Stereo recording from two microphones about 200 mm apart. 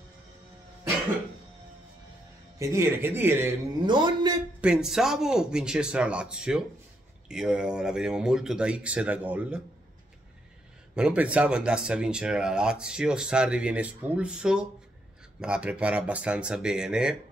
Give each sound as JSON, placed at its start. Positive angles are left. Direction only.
{"t": 2.6, "sound": "speech", "side_deg": -15}
{"t": 3.8, "sound": "a man's voice", "side_deg": -20}
{"t": 4.6, "sound": "speech", "side_deg": -5}
{"t": 11.0, "sound": "speech", "side_deg": -5}